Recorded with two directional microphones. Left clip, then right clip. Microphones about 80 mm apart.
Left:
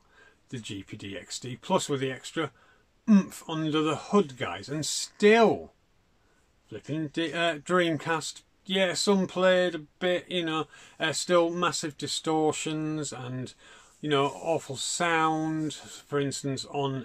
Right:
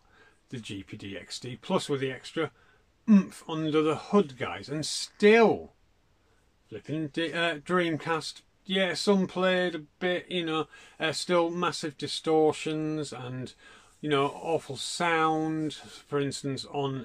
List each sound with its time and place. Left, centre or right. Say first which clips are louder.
0.5 s speech: left 1 dB; centre
6.7 s speech: even; left
7.6 s speech: left 2 dB; left